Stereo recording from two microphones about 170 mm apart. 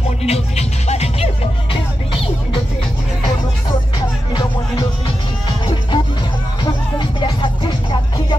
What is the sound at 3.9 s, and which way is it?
Music, 25° left (ahead or behind).